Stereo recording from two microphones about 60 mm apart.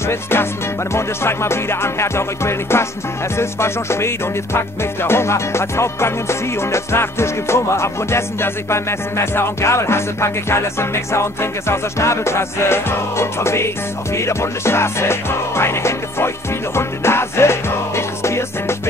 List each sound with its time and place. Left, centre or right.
0.1 s music: left